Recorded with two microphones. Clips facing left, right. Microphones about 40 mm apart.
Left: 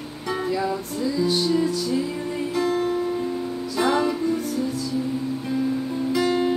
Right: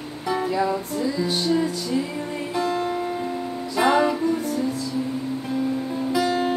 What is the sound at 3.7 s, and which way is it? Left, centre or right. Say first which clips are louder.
Music: right 3 dB; right.